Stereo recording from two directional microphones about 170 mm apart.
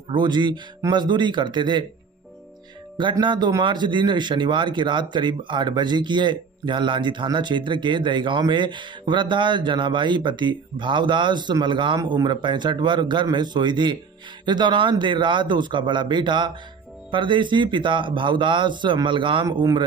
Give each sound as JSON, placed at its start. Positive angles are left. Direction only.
{"t": 0.1, "sound": "speech", "side_deg": -25}
{"t": 3.0, "sound": "speech", "side_deg": -25}